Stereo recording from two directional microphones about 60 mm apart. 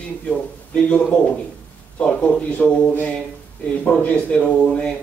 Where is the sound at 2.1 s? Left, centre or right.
Centre.